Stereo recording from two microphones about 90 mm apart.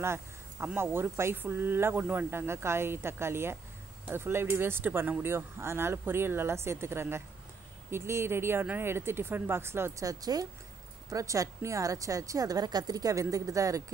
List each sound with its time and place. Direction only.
0.0 s a sound: 30° right (ahead or behind)
0.7 s speech: 25° right (ahead or behind)
10.0 s a woman's voice: 40° right (ahead or behind)